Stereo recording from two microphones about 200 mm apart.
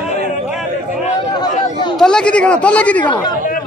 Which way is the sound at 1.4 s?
25° left (ahead or behind).